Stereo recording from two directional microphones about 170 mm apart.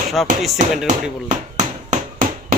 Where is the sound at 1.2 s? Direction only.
45° right (ahead or behind).